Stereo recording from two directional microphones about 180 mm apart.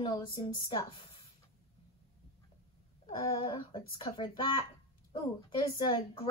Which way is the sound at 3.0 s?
25° left (ahead or behind).